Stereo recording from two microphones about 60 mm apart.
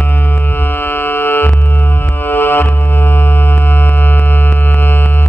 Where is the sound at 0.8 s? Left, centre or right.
Left.